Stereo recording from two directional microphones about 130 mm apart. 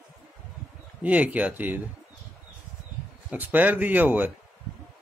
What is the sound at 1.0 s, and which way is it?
Speech, 10° right (ahead or behind).